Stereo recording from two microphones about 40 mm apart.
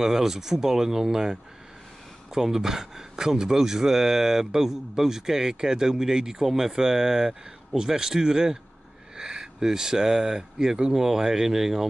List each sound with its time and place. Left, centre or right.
0.0 s speech: centre